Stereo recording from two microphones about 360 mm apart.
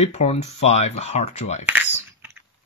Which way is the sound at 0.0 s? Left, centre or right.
Centre.